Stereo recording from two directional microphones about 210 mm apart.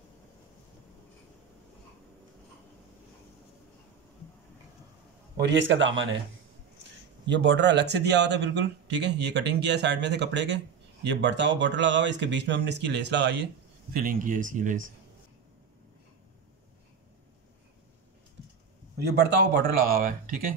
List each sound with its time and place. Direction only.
5.4 s speech: 60° right (ahead or behind)
7.2 s speech: 55° right (ahead or behind)
13.9 s speech: 40° right (ahead or behind)
18.9 s a man's voice: 50° right (ahead or behind)